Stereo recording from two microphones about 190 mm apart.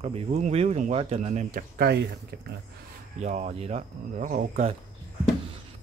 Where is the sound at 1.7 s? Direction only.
60° right (ahead or behind).